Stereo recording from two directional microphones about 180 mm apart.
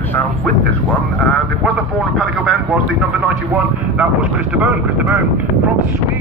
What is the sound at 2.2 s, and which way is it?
A man's voice, centre (ahead or behind).